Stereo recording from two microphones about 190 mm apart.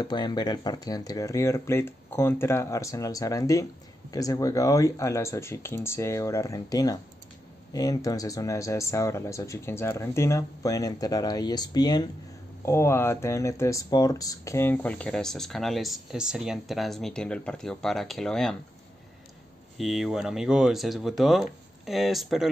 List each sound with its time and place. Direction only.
0.0 s speech: 25° left (ahead or behind); by 18.6 s centre (ahead or behind)
19.8 s speech: centre (ahead or behind)